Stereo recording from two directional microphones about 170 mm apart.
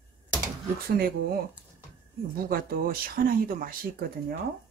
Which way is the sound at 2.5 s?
60° right (ahead or behind).